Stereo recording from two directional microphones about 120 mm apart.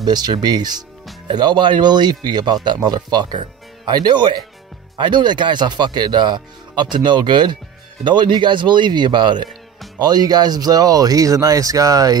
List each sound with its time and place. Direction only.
0.0 s speech: 35° right (ahead or behind)